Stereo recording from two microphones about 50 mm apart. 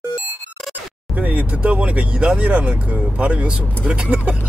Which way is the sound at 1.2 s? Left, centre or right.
Right.